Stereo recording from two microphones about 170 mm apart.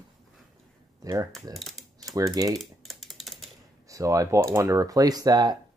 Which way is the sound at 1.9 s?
20° right (ahead or behind).